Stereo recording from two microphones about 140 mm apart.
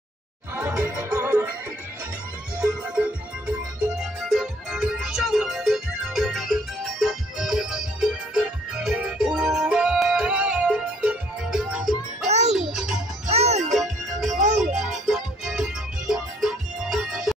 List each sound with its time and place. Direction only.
0.6 s music: 15° right (ahead or behind)
2.6 s music: 10° right (ahead or behind)
12.3 s music: 55° right (ahead or behind)
12.5 s music: 5° right (ahead or behind)
13.3 s music: 50° right (ahead or behind)
13.7 s music: centre (ahead or behind)